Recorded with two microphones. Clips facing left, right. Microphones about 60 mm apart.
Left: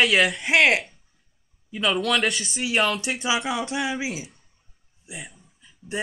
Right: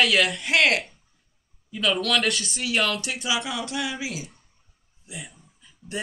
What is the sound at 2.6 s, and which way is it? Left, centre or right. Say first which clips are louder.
Speech: left 4 dB; centre.